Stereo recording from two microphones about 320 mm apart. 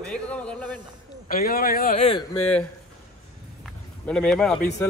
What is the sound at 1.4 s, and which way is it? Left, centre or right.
Speech, left.